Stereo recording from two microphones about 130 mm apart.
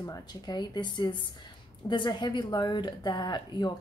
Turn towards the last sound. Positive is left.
turn(degrees=35)  # may be behind; listen again after turning